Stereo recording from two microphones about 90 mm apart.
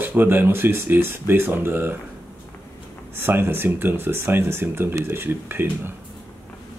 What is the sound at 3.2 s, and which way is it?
Speech, 25° right (ahead or behind).